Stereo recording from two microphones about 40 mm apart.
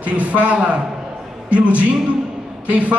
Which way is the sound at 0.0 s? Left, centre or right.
Right.